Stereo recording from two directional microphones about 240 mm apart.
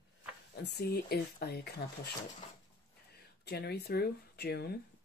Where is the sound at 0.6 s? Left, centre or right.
Left.